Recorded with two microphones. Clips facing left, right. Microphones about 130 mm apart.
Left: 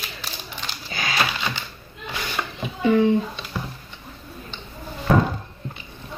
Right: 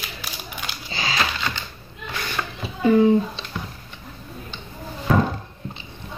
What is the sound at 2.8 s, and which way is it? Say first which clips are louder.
Speech: right 2 dB; 35° right (ahead or behind).